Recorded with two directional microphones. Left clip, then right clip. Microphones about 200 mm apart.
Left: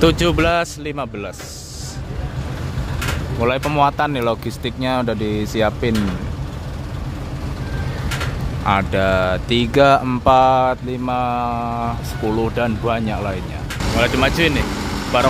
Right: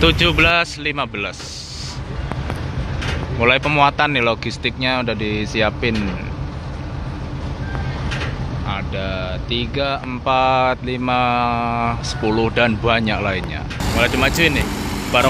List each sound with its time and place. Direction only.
0.0 s speech: 25° left (ahead or behind)
3.3 s speech: 10° left (ahead or behind)
8.6 s speech: 45° left (ahead or behind)
10.3 s speech: 20° left (ahead or behind); by 15.3 s 5° left (ahead or behind)